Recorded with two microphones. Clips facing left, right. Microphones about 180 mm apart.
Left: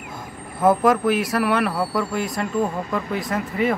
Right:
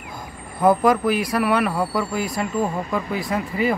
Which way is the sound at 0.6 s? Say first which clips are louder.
Even; centre (ahead or behind).